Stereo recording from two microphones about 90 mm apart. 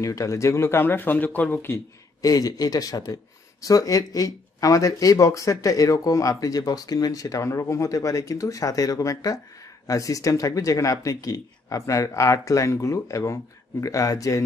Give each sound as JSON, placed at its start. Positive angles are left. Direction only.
{"t": 0.0, "sound": "speech", "side_deg": 35}
{"t": 2.2, "sound": "speech", "side_deg": 45}